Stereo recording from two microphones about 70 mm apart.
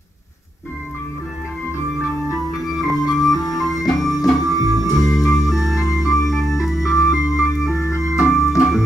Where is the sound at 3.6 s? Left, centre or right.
Centre.